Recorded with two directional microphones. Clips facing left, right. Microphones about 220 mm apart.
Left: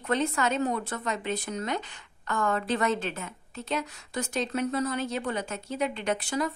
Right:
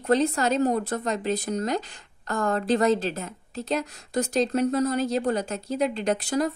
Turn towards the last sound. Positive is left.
turn(degrees=-40)  # may be behind; listen again after turning